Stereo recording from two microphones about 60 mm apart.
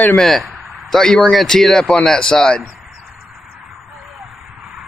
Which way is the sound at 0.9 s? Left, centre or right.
Centre.